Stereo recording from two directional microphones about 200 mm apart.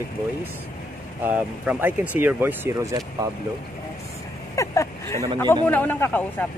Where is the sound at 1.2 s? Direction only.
10° right (ahead or behind).